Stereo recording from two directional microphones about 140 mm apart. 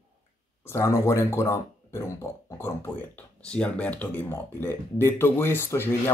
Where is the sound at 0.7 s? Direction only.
20° left (ahead or behind).